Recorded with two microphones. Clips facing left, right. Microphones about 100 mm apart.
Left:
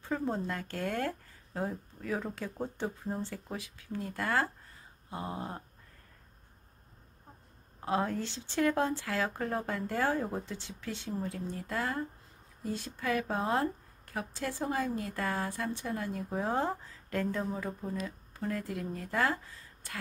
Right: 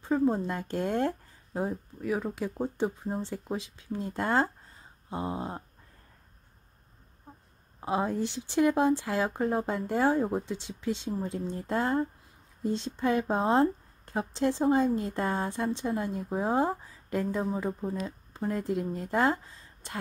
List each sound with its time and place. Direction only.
0.0 s a woman's voice: 15° right (ahead or behind)
7.8 s a woman's voice: 20° right (ahead or behind)